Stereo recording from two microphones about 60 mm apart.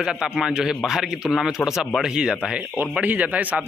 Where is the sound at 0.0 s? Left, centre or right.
Centre.